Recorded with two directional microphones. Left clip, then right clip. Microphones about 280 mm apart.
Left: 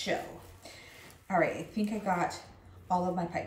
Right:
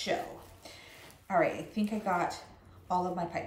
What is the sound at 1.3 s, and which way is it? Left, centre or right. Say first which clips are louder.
Speech: even; centre.